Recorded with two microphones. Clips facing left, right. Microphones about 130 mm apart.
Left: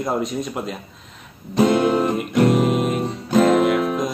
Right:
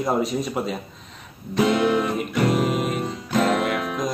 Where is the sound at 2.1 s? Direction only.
Centre (ahead or behind).